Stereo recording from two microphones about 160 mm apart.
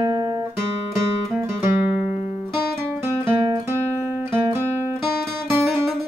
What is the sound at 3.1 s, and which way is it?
Music, 15° right (ahead or behind).